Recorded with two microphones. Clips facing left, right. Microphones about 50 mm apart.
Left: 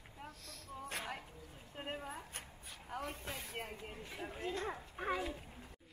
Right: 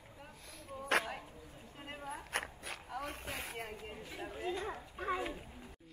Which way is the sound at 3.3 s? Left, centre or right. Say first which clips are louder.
Right 2 dB; right.